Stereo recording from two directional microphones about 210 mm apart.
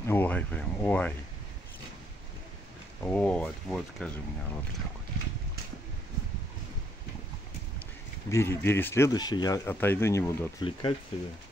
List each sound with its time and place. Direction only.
0.0 s speech: 10° left (ahead or behind)
3.0 s speech: 5° left (ahead or behind)
8.3 s speech: 10° left (ahead or behind)
10.6 s speech: 25° left (ahead or behind)